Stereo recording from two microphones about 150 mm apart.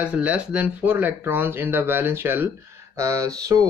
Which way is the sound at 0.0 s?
10° right (ahead or behind).